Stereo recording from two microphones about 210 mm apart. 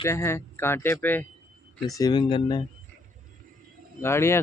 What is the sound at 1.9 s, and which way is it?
Speech, 20° left (ahead or behind).